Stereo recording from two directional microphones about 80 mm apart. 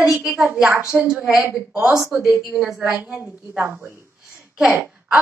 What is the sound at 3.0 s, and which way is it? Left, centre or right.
A woman's voice, right.